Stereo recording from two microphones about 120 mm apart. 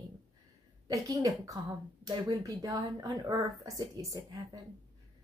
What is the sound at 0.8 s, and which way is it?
A woman's voice, 30° right (ahead or behind).